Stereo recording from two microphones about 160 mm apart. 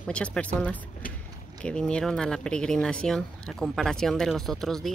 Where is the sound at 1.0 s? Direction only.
60° left (ahead or behind).